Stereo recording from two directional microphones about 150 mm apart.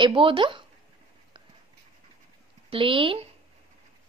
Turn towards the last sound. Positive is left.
turn(degrees=-35)  # may be behind; listen again after turning